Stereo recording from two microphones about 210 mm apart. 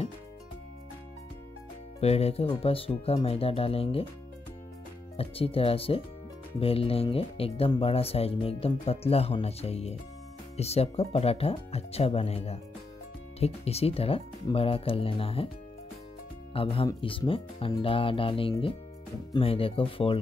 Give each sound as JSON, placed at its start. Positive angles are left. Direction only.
{"t": 2.0, "sound": "speech", "side_deg": 30}
{"t": 5.1, "sound": "speech", "side_deg": 25}
{"t": 16.5, "sound": "speech", "side_deg": 25}